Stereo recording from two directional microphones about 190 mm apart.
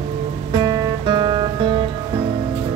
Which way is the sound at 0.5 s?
20° right (ahead or behind).